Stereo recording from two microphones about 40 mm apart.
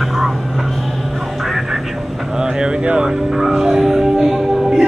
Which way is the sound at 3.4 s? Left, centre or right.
Centre.